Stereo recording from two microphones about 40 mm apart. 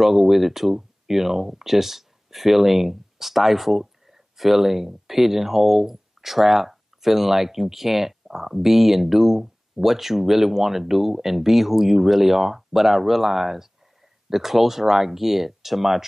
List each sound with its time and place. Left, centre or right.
0.0 s speech: centre